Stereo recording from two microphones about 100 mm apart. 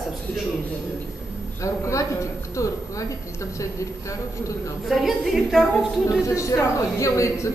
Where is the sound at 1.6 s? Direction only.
30° left (ahead or behind).